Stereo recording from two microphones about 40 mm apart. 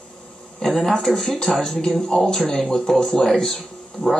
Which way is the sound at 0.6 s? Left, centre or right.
Centre.